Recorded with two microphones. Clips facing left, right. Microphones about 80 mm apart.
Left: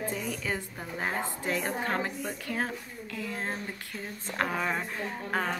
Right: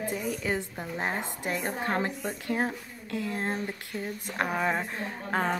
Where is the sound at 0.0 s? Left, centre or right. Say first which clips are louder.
Right 2 dB; centre.